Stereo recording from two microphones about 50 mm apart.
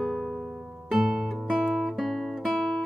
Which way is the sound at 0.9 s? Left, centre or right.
Centre.